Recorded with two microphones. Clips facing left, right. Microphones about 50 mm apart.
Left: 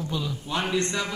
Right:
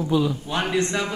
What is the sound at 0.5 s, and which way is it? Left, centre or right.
Speech, right.